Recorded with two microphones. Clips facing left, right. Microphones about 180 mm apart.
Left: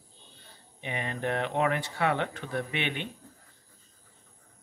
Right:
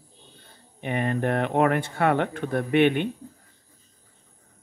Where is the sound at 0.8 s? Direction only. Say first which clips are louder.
Right 7 dB; 50° right (ahead or behind).